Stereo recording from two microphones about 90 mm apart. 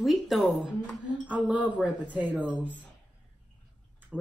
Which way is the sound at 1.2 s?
15° right (ahead or behind).